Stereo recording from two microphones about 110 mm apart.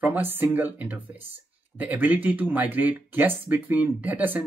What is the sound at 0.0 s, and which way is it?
Speech, 15° right (ahead or behind).